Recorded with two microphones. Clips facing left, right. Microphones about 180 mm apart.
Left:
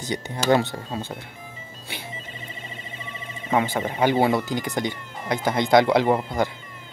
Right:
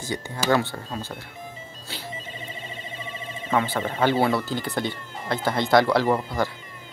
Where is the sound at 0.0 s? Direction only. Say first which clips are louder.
Left 2 dB; 20° left (ahead or behind).